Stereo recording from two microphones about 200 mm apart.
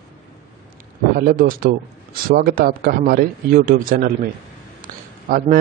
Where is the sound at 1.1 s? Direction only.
45° right (ahead or behind).